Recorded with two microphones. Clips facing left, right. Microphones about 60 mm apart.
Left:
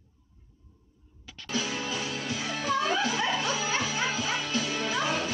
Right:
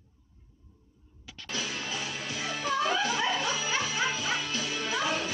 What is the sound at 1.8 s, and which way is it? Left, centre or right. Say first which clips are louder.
Music: left 3 dB; centre.